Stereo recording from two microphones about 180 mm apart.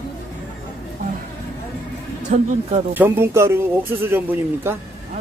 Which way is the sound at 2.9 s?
10° right (ahead or behind).